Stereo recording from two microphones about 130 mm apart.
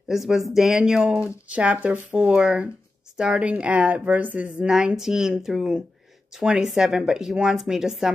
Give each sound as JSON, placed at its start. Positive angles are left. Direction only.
{"t": 0.1, "sound": "speech", "side_deg": 0}